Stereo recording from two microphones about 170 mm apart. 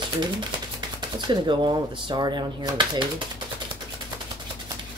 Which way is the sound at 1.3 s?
30° right (ahead or behind).